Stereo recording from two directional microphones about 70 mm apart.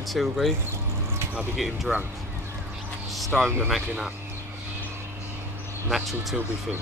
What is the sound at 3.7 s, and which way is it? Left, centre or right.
Speech, centre.